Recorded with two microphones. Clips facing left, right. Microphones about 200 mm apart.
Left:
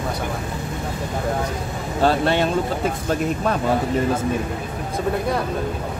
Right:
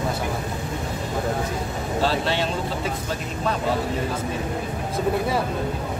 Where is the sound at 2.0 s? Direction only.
55° left (ahead or behind).